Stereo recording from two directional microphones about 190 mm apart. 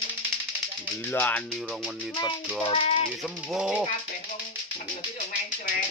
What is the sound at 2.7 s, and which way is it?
Speech, 30° left (ahead or behind).